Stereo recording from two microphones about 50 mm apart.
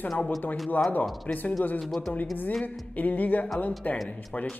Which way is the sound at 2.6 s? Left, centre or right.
Left.